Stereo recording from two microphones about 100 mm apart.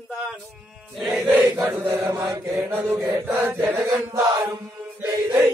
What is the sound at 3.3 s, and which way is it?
Chant, 25° right (ahead or behind).